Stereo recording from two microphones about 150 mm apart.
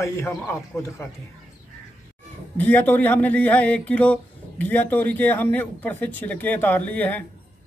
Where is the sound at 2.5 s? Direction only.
10° left (ahead or behind).